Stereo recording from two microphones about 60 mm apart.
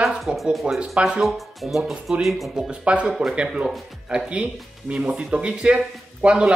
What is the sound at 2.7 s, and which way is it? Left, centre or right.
Speech, centre.